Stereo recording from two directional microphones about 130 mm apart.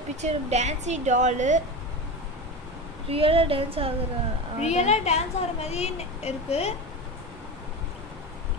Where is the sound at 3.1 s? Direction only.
45° right (ahead or behind).